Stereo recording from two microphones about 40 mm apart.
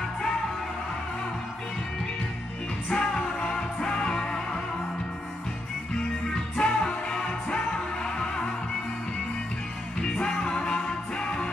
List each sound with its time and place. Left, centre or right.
2.9 s music: centre
6.6 s music: left
10.3 s music: centre